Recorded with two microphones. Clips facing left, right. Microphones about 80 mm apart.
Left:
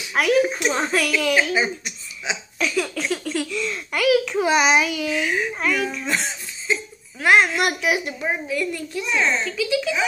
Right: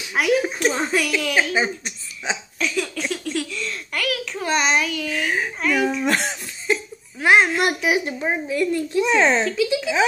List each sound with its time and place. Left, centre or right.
0.1 s a child's voice: centre
1.5 s a woman's voice: right
2.6 s a sound: centre
5.2 s a woman's voice: right
5.6 s a child's voice: centre
6.0 s cough: right
7.2 s a child's voice: right
9.0 s speech: right